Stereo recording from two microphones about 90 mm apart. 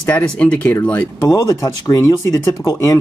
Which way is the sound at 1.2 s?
40° left (ahead or behind).